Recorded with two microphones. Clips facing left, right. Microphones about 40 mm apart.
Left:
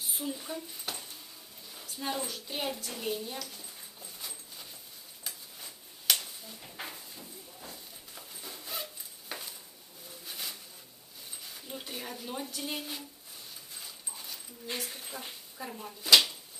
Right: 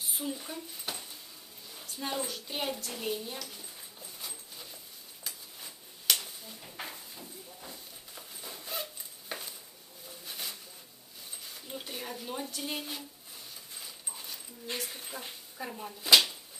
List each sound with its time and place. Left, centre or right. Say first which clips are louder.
0.0 s speech: even; centre
1.7 s a sound: left 1 dB; centre
10.0 s pigeon: even; centre
11.4 s speech: even; centre
13.7 s dog: right 1 dB; centre